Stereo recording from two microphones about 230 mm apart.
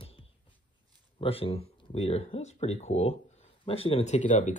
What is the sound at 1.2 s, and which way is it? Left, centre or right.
Speech, left.